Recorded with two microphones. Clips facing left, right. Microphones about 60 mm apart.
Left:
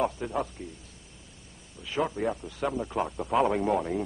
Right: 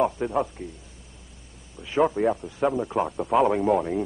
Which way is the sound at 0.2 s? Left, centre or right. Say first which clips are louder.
Right 6 dB; centre.